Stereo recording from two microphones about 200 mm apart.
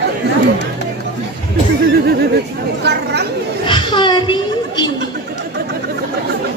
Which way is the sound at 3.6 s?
25° left (ahead or behind).